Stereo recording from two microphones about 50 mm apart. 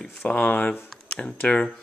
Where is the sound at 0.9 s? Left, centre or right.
Centre.